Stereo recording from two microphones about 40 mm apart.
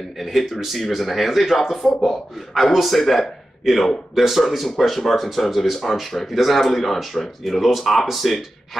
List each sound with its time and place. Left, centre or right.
0.2 s speech: centre
4.1 s speech: centre
4.4 s speech: centre